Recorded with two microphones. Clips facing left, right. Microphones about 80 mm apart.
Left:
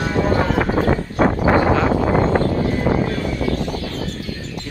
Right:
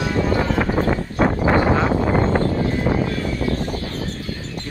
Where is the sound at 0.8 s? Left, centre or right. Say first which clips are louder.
Left 2 dB; left.